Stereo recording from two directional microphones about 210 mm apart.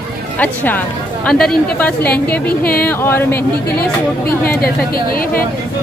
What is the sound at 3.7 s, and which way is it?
Speech, 45° left (ahead or behind).